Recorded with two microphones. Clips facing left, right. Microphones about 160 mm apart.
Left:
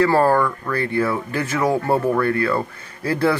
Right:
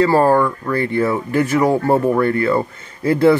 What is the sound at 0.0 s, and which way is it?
Speech, 20° right (ahead or behind).